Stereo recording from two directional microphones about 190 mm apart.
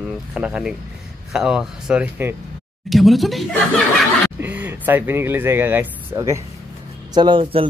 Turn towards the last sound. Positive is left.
turn(degrees=-25)  # may be behind; listen again after turning